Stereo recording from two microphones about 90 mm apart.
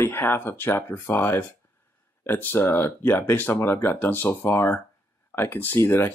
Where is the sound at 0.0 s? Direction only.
25° left (ahead or behind).